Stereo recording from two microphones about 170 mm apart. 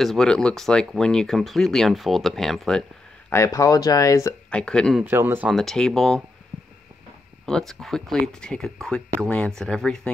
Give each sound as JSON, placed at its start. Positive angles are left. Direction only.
{"t": 0.0, "sound": "speech", "side_deg": 0}
{"t": 3.3, "sound": "speech", "side_deg": 20}
{"t": 4.5, "sound": "speech", "side_deg": 5}
{"t": 5.0, "sound": "speech", "side_deg": -10}
{"t": 5.5, "sound": "speech", "side_deg": 0}
{"t": 7.4, "sound": "speech", "side_deg": 0}